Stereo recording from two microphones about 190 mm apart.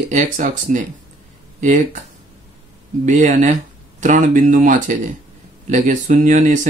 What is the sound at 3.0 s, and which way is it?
Speech, 40° right (ahead or behind).